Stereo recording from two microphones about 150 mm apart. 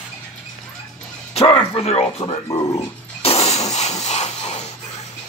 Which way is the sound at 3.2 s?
45° left (ahead or behind).